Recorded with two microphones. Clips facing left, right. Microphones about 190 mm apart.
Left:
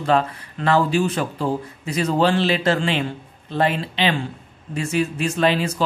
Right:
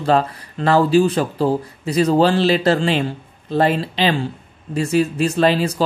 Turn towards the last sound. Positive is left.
turn(degrees=-35)  # may be behind; listen again after turning